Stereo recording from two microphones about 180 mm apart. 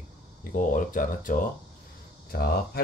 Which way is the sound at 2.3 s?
60° left (ahead or behind).